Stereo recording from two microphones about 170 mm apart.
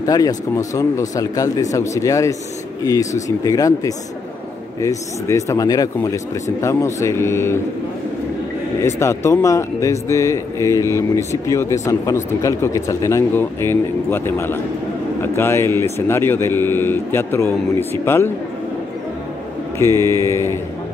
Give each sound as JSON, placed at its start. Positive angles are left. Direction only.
{"t": 0.0, "sound": "a man's voice", "side_deg": 20}
{"t": 8.8, "sound": "a man's voice", "side_deg": 15}
{"t": 19.8, "sound": "a man's voice", "side_deg": 15}